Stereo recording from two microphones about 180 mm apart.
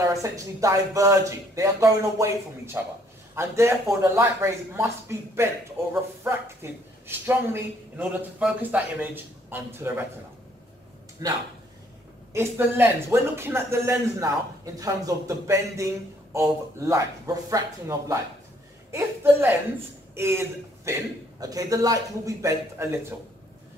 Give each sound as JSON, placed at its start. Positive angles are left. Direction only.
{"t": 0.1, "sound": "speech", "side_deg": -15}
{"t": 11.2, "sound": "speech", "side_deg": -20}